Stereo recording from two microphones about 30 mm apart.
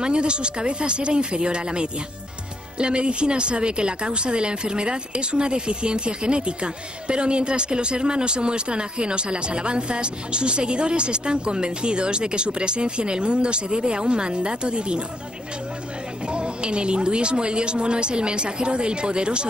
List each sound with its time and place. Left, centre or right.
0.0 s speech: right
16.3 s speech: right